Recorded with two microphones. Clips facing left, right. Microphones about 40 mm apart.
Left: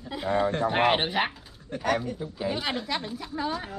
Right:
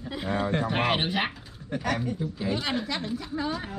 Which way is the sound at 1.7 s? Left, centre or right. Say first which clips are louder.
Right 2 dB; centre.